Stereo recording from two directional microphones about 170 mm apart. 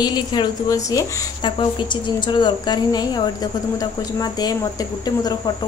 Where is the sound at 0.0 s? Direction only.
25° left (ahead or behind).